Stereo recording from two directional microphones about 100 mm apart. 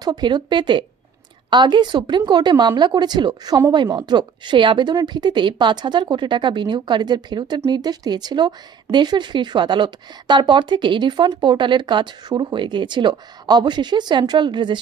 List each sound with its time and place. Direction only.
0.0 s a woman's voice: 45° right (ahead or behind)